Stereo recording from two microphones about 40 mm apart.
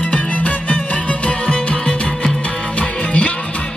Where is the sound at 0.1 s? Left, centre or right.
Left.